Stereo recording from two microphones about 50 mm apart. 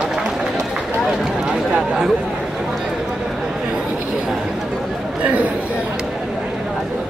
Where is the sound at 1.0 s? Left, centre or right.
Centre.